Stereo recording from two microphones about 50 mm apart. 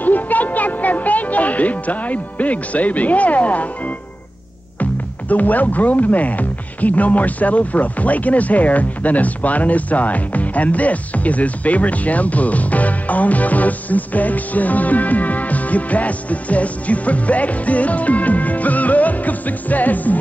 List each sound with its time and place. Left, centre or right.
0.0 s music: left
5.3 s speech: left